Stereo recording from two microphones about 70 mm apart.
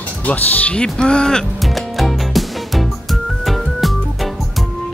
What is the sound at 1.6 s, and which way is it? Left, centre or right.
Music, centre.